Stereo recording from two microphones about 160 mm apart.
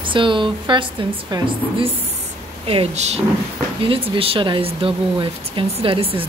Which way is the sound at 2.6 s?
40° right (ahead or behind).